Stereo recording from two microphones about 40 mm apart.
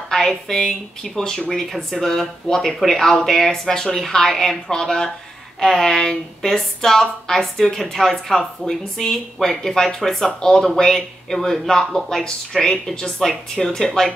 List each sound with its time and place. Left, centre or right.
0.1 s speech: centre